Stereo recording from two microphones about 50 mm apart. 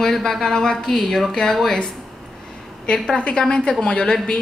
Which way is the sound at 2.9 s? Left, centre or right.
Left.